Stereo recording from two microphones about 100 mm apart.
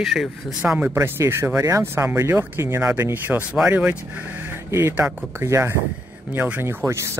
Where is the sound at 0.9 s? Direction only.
25° right (ahead or behind).